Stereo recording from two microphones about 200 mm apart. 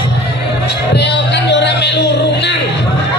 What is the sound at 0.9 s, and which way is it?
Music, 60° left (ahead or behind).